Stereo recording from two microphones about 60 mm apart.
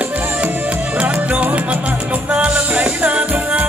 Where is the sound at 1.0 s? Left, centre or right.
Right.